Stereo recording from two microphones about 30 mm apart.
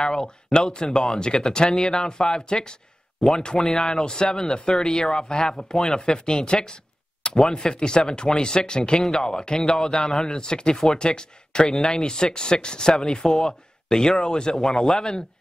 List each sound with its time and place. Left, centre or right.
0.0 s speech: left
6.0 s speech: left
7.3 s speech: centre
7.6 s speech: left